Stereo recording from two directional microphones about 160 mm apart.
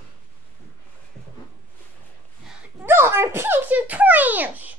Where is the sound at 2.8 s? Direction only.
15° right (ahead or behind).